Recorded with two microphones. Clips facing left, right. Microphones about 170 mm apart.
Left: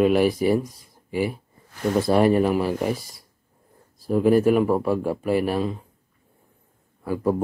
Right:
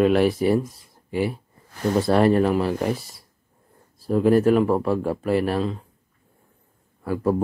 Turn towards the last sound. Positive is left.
turn(degrees=0)  # may be behind; listen again after turning